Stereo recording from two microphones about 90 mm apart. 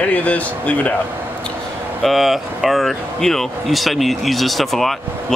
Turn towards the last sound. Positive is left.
turn(degrees=0)  # may be behind; listen again after turning